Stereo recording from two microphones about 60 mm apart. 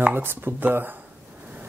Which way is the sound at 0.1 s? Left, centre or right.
Right.